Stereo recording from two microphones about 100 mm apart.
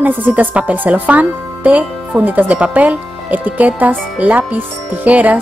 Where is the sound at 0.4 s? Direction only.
15° right (ahead or behind).